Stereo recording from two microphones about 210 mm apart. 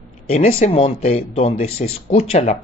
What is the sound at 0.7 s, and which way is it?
Speech, 25° left (ahead or behind).